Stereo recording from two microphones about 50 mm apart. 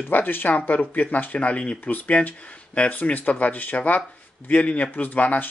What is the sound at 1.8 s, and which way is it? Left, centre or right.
Speech, left.